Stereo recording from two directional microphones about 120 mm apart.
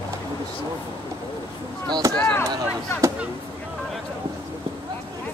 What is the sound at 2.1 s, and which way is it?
Chop, 10° left (ahead or behind).